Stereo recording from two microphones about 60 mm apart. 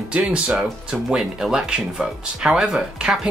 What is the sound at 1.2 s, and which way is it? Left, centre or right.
Speech, centre.